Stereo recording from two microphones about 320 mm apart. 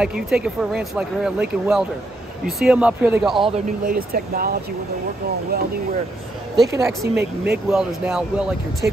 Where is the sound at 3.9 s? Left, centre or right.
Right.